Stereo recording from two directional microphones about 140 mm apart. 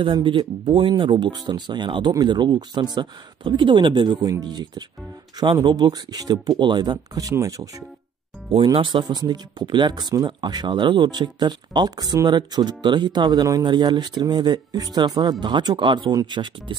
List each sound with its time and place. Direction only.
0.0 s speech: 35° right (ahead or behind)
8.6 s speech: 35° right (ahead or behind)